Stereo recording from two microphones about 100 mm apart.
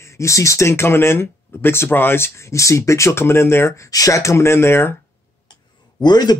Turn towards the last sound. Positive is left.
turn(degrees=45)  # may be behind; listen again after turning